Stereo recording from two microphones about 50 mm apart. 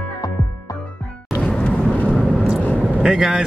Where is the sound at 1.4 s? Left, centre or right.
Left.